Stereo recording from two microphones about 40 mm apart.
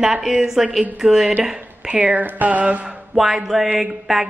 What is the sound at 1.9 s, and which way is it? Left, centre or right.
Speech, right.